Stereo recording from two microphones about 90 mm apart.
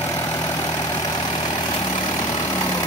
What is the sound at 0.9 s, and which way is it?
Vehicle, 55° left (ahead or behind).